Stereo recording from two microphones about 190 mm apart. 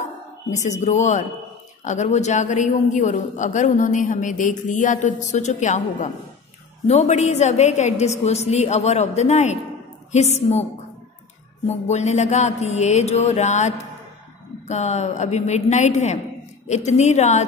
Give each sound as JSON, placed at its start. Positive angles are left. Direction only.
{"t": 0.5, "sound": "a man's voice", "side_deg": 40}